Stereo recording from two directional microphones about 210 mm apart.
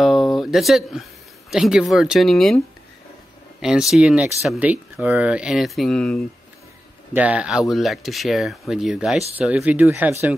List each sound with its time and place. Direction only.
0.0 s a sound: centre (ahead or behind)
1.5 s speech: centre (ahead or behind)
3.6 s speech: centre (ahead or behind)